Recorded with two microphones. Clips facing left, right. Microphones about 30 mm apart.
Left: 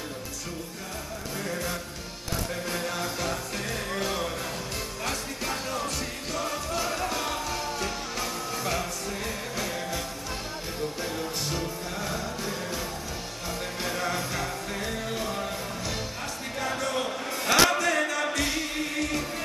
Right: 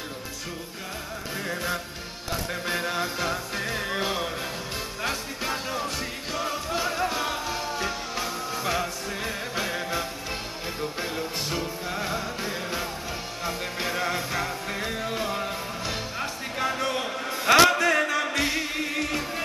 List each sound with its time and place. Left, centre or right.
1.4 s music: right